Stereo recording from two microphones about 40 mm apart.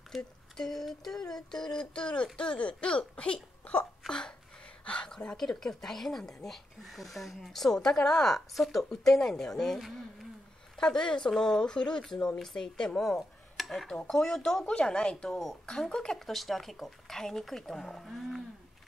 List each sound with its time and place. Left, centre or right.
0.1 s speech: centre
0.6 s speech: centre; by 5.1 s left
5.4 s speech: centre
10.8 s speech: centre
13.6 s dishes: centre
14.0 s speech: centre
14.9 s speech: left
16.2 s speech: centre